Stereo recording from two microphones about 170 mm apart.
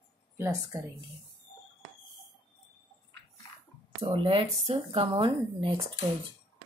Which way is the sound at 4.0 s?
30° right (ahead or behind).